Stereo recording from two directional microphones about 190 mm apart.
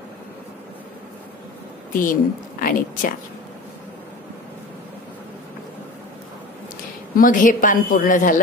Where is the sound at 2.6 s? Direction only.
45° left (ahead or behind).